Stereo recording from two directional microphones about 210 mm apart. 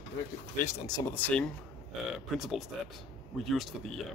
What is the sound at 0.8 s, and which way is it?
Speech, 5° left (ahead or behind).